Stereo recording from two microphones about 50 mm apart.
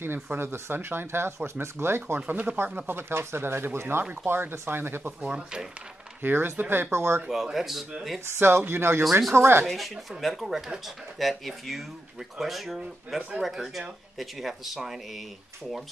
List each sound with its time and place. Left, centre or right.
0.0 s speech: right
2.1 s speech: right
2.5 s speech: right
5.2 s speech: centre
6.2 s speech: right
6.9 s speech: right
7.5 s speech: centre
8.3 s speech: right
9.7 s speech: centre